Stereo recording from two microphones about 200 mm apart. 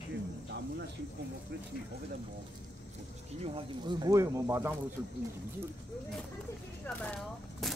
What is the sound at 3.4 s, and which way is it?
Speech, 25° right (ahead or behind).